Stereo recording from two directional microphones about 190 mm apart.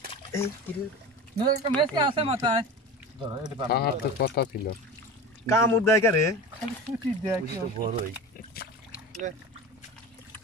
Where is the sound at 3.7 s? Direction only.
60° left (ahead or behind).